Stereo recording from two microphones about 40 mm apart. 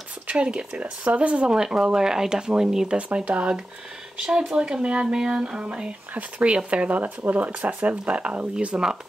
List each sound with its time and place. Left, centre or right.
0.3 s speech: right
1.0 s speech: right
1.5 s speech: centre
2.9 s speech: right
4.2 s speech: centre